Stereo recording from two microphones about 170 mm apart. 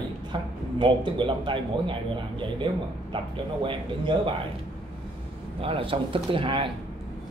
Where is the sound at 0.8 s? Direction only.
30° right (ahead or behind).